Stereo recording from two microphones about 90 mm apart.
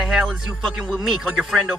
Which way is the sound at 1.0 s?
5° right (ahead or behind).